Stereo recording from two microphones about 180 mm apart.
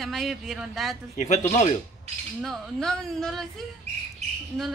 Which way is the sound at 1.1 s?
40° left (ahead or behind).